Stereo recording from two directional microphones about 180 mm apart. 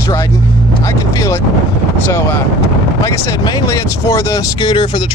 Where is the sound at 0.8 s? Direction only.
20° left (ahead or behind).